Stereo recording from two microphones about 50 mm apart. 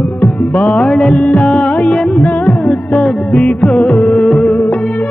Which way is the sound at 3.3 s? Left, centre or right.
Left.